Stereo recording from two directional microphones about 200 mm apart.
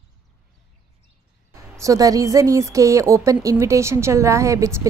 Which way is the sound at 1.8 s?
15° right (ahead or behind).